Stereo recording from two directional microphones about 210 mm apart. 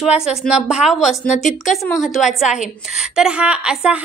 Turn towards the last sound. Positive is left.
turn(degrees=-5)  # may be behind; listen again after turning